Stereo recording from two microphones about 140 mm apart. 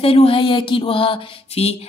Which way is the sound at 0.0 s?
45° left (ahead or behind).